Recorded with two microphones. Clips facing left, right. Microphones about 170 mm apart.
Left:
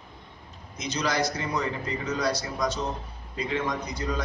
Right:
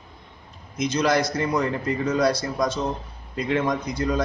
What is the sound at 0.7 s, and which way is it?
A man's voice, 50° right (ahead or behind).